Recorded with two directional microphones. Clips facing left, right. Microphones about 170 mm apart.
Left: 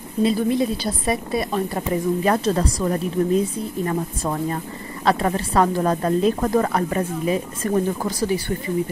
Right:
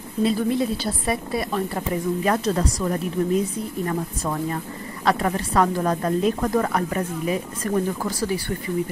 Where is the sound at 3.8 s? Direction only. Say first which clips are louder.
Left 2 dB; 30° left (ahead or behind).